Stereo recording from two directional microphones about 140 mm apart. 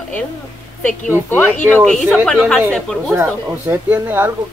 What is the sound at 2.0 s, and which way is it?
Speech, centre (ahead or behind).